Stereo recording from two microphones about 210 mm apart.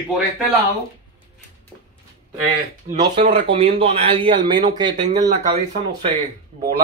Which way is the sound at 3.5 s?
25° right (ahead or behind).